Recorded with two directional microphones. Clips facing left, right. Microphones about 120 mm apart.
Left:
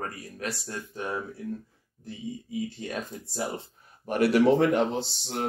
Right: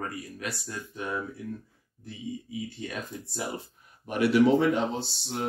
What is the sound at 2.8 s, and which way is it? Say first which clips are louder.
Speech: left 1 dB; 35° left (ahead or behind).